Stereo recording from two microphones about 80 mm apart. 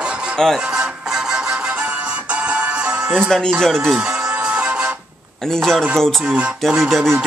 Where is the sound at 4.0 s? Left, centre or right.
Centre.